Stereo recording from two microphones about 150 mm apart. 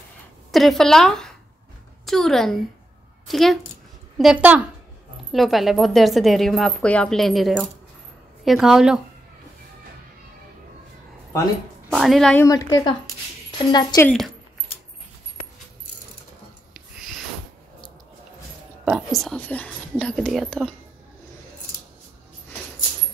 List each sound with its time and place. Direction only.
0.5 s a woman's voice: centre (ahead or behind)
11.9 s speech: centre (ahead or behind)
12.4 s a woman's voice: 20° left (ahead or behind)
14.0 s speech: 5° left (ahead or behind)
18.9 s speech: centre (ahead or behind)